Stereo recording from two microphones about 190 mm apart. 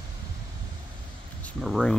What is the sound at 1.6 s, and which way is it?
Speech, centre (ahead or behind).